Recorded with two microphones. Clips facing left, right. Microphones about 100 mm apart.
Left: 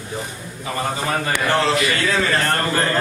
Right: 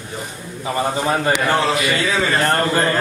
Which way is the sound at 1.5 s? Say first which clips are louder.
Right 1 dB; 10° right (ahead or behind).